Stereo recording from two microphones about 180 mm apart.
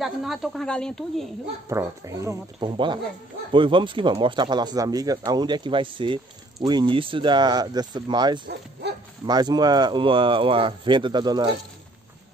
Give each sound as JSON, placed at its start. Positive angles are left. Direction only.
{"t": 0.0, "sound": "speech", "side_deg": 0}
{"t": 1.7, "sound": "speech", "side_deg": -15}
{"t": 8.8, "sound": "bow-wow", "side_deg": -70}
{"t": 9.2, "sound": "speech", "side_deg": -25}